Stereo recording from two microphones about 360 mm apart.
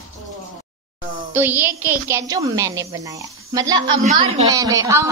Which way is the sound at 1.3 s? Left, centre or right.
Centre.